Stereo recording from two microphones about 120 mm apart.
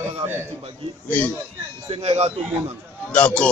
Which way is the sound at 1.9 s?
60° right (ahead or behind).